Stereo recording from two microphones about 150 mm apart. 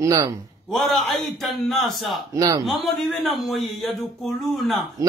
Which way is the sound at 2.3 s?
25° right (ahead or behind).